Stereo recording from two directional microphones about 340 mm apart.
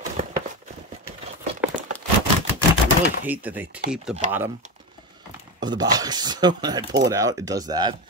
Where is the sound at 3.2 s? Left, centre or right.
Centre.